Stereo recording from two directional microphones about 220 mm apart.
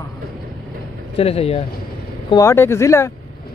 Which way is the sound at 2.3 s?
15° left (ahead or behind).